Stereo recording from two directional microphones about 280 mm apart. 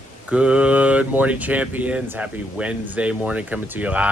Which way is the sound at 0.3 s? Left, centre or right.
Centre.